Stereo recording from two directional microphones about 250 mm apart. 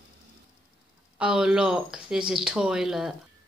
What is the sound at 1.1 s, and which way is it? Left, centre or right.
Speech, centre.